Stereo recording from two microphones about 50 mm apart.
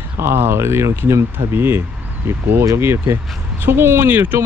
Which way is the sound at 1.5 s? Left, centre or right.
Right.